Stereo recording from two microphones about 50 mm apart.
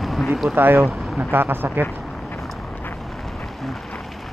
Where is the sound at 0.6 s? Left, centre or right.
Right.